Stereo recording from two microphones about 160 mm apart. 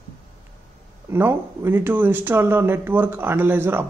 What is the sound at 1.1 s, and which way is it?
A man's voice, 15° right (ahead or behind).